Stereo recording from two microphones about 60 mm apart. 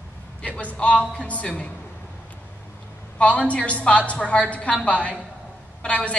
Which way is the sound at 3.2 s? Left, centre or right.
Left.